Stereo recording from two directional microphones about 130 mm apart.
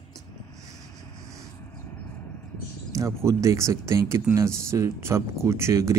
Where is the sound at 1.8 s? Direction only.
15° left (ahead or behind).